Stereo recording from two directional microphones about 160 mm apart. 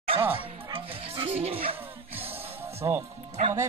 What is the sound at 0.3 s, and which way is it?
Music, 35° right (ahead or behind).